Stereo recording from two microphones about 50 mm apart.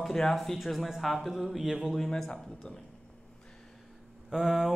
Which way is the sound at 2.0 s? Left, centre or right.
Centre.